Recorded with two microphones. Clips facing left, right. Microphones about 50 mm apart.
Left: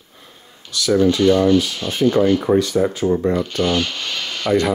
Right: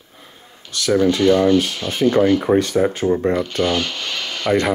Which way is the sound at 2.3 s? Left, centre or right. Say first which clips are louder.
Even; centre.